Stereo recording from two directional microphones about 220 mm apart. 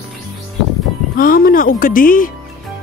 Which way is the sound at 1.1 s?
40° left (ahead or behind).